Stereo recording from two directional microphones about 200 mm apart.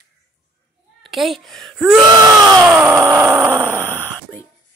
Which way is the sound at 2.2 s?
15° right (ahead or behind).